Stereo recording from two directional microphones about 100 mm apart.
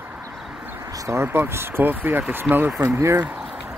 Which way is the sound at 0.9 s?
30° right (ahead or behind).